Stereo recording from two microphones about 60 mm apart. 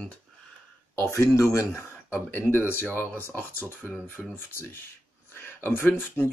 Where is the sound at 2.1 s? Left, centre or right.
Left.